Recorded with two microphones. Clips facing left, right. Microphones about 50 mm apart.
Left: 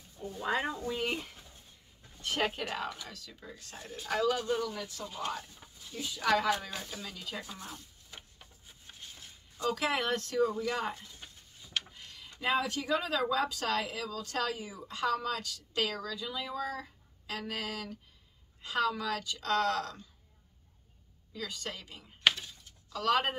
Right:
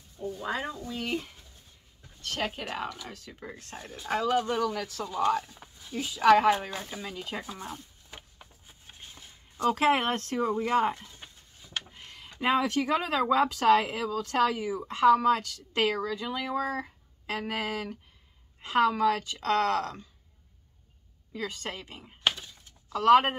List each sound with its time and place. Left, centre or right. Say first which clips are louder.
0.2 s a sound: even; centre
0.7 s speech: even; centre
2.5 s speech: right 2 dB; centre
3.1 s a woman's voice: right 5 dB; right
3.8 s speech: right 4 dB; right
4.4 s speech: right 5 dB; right
4.7 s speech: right 6 dB; right
5.9 s speech: right 9 dB; right
6.5 s a woman's voice: right 4 dB; right
7.5 s a sound: right 6 dB; right
9.6 s a woman's voice: right 7 dB; right
21.3 s a woman's voice: right 5 dB; right